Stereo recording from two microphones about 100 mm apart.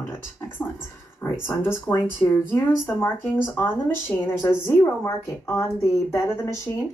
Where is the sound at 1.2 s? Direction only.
25° left (ahead or behind).